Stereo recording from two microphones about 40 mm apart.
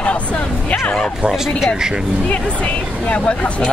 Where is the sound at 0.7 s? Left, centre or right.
Left.